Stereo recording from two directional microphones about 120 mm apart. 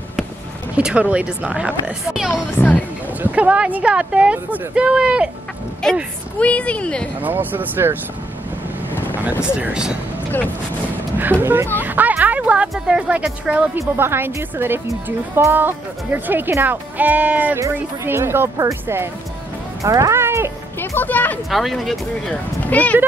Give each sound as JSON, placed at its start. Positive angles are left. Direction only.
{"t": 0.7, "sound": "a woman's voice", "side_deg": -10}
{"t": 5.8, "sound": "speech", "side_deg": 5}
{"t": 7.2, "sound": "a woman's voice", "side_deg": -15}
{"t": 9.4, "sound": "a woman's voice", "side_deg": -10}
{"t": 11.4, "sound": "a woman's voice", "side_deg": -20}
{"t": 20.8, "sound": "speech", "side_deg": 15}
{"t": 21.5, "sound": "speech", "side_deg": 0}
{"t": 22.3, "sound": "speech", "side_deg": 10}